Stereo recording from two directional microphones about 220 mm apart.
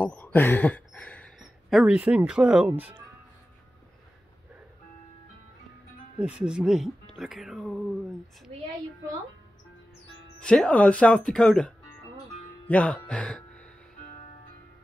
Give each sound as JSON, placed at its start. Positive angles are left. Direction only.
{"t": 0.0, "sound": "speech", "side_deg": 5}
{"t": 6.1, "sound": "speech", "side_deg": -5}
{"t": 10.4, "sound": "speech", "side_deg": 5}